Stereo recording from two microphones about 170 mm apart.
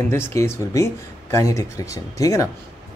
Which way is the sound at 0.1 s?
15° left (ahead or behind).